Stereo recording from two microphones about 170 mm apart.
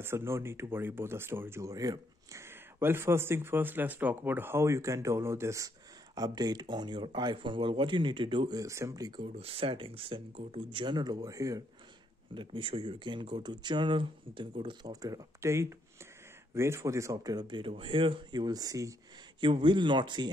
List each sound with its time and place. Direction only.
0.0 s speech: 15° right (ahead or behind)
9.2 s speech: 35° right (ahead or behind)
12.4 s speech: 30° right (ahead or behind)